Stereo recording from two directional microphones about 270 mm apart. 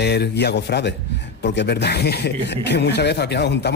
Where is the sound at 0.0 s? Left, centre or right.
Left.